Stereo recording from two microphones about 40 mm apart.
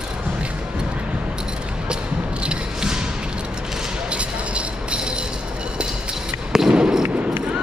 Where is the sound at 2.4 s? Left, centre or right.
Right.